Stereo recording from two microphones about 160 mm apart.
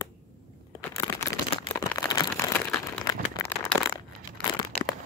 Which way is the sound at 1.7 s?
20° left (ahead or behind).